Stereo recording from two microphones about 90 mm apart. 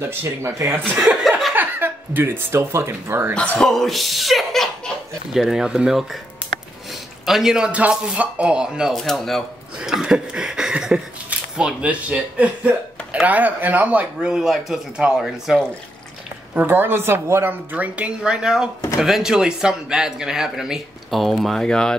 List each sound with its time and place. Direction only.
0.0 s speech: 30° right (ahead or behind)
0.9 s speech: 10° right (ahead or behind)
1.5 s speech: 20° right (ahead or behind)
3.4 s speech: 5° left (ahead or behind); by 8.9 s 10° right (ahead or behind)
8.9 s speech: centre (ahead or behind)
16.5 s a woman's voice: 20° right (ahead or behind); by 21.9 s 5° left (ahead or behind)